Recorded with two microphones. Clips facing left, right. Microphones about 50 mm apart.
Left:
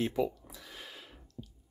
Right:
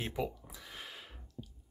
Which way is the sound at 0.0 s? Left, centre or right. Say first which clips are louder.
Left 6 dB; centre.